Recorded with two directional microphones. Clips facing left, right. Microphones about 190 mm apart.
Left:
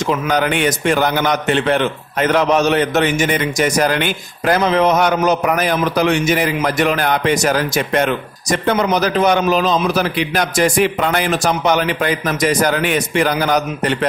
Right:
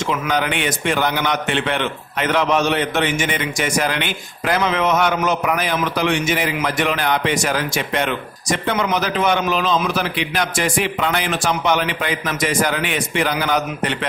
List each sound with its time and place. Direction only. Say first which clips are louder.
0.3 s a man's voice: left 5 dB; 45° left (ahead or behind)